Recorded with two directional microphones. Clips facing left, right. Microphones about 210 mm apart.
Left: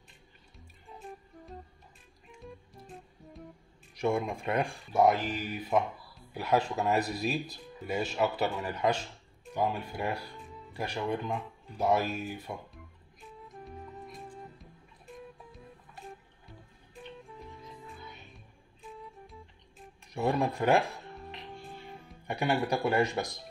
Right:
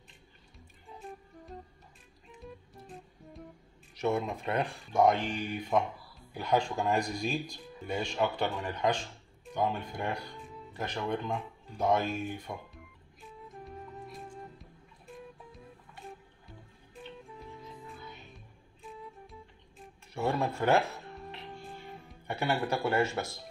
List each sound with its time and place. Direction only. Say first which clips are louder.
0.8 s music: even; centre (ahead or behind)
3.9 s speech: left 1 dB; 10° left (ahead or behind)
13.5 s music: even; centre (ahead or behind)
18.9 s music: right 1 dB; centre (ahead or behind)
20.2 s speech: left 2 dB; 15° left (ahead or behind)
22.3 s speech: left 2 dB; 15° left (ahead or behind)